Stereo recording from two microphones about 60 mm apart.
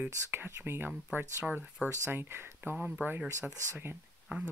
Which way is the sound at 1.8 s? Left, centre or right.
Left.